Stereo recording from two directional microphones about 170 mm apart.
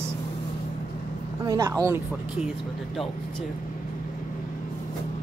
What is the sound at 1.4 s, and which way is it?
Speech, 20° right (ahead or behind).